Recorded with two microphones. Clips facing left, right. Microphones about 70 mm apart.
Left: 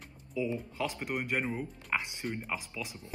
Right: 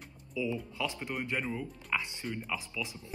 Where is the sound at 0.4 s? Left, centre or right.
Left.